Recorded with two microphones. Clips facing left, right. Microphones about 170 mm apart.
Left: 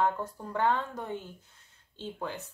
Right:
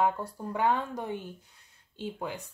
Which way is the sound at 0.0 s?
10° right (ahead or behind).